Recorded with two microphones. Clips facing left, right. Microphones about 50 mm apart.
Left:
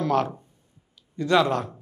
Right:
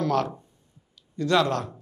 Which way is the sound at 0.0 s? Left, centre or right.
Left.